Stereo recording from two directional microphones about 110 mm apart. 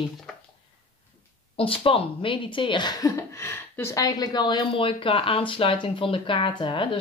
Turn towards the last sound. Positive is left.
turn(degrees=50)  # may be behind; listen again after turning